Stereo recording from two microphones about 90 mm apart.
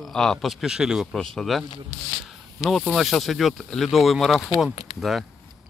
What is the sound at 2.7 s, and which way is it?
Speech, centre (ahead or behind).